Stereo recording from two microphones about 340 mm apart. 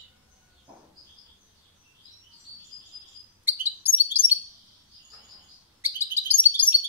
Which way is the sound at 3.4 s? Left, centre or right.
Centre.